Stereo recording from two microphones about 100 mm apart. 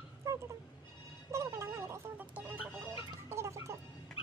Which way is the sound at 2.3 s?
15° right (ahead or behind).